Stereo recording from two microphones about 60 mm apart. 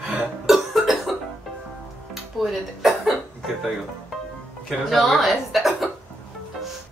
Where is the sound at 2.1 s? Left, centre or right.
Centre.